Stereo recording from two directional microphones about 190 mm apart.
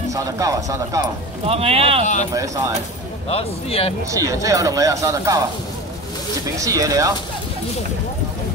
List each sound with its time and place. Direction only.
0.1 s speech: 15° right (ahead or behind)
1.4 s speech: 30° right (ahead or behind)
2.3 s speech: 15° right (ahead or behind)
3.3 s speech: 30° left (ahead or behind)
4.1 s speech: 15° right (ahead or behind)
6.6 s speech: 15° right (ahead or behind)